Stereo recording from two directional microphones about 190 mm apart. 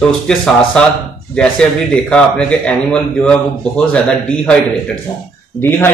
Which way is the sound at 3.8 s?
5° left (ahead or behind).